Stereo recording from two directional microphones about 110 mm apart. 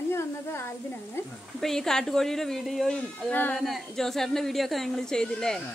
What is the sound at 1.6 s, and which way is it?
A woman's voice, 5° left (ahead or behind).